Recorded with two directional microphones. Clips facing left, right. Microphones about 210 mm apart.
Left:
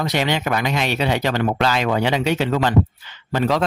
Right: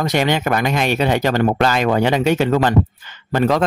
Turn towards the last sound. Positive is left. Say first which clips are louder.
# right 3 dB
turn(degrees=-50)  # may be behind; listen again after turning